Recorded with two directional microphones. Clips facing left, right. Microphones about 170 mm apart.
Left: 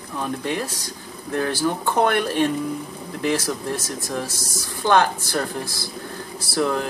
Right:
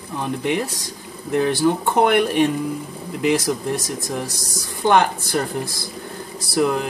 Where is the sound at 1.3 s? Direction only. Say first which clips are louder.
Right 5 dB; 15° right (ahead or behind).